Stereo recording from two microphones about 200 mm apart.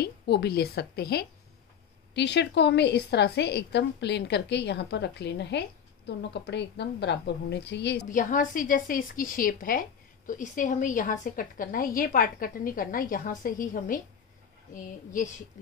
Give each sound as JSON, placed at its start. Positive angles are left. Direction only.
{"t": 0.0, "sound": "a woman's voice", "side_deg": 55}
{"t": 8.1, "sound": "a woman's voice", "side_deg": 40}